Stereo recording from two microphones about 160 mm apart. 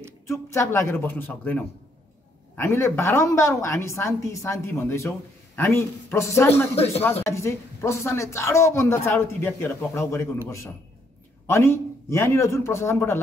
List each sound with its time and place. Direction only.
0.3 s a woman's voice: 15° left (ahead or behind)
11.4 s a woman's voice: 15° left (ahead or behind)